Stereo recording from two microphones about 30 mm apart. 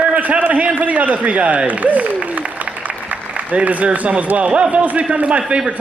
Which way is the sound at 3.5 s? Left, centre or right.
Right.